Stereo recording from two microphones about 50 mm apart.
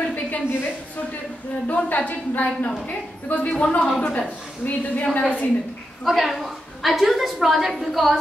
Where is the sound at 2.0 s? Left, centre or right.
Left.